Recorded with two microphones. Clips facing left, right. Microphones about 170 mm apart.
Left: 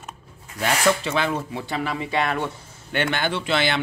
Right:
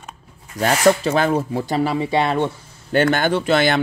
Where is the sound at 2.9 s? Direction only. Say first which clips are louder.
Right 7 dB; 40° right (ahead or behind).